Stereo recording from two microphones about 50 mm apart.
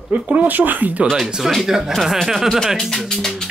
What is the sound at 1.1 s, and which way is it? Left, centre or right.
Speech, centre.